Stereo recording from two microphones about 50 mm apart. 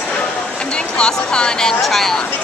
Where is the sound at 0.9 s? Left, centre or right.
Centre.